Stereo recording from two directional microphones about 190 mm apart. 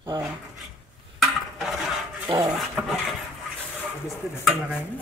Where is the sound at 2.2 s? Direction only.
20° right (ahead or behind).